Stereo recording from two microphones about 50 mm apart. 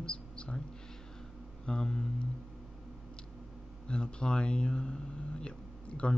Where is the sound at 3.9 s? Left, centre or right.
Centre.